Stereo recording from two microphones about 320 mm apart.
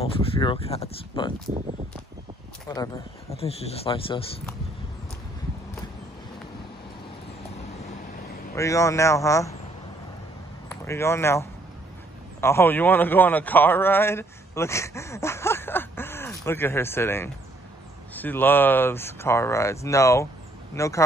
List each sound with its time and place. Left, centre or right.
0.0 s speech: centre
2.7 s speech: centre
8.5 s speech: centre
10.7 s a man's voice: centre